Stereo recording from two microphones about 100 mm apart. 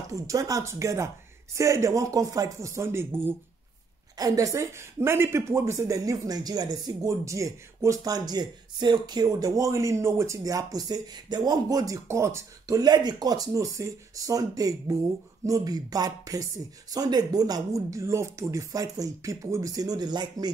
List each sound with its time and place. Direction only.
0.1 s speech: 35° right (ahead or behind)
4.2 s speech: 35° right (ahead or behind)